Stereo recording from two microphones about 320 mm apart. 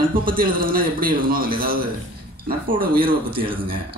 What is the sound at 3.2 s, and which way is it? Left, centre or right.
Speech, centre.